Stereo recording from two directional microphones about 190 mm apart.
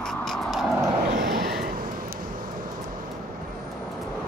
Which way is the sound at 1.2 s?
55° right (ahead or behind).